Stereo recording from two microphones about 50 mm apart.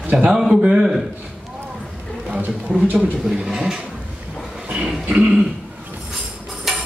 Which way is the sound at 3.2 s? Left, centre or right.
Centre.